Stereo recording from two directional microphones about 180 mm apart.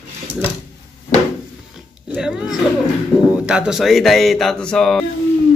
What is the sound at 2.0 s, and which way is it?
Speech, 5° right (ahead or behind).